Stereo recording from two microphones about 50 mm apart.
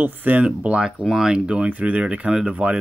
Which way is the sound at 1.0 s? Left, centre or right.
Centre.